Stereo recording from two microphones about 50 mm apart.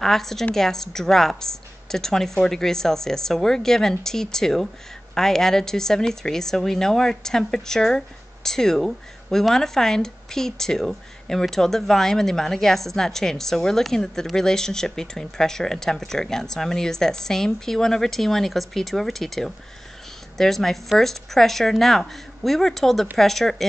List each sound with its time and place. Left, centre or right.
0.0 s a woman's voice: centre